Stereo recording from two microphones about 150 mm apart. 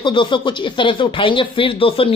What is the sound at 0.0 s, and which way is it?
Speech, 35° left (ahead or behind).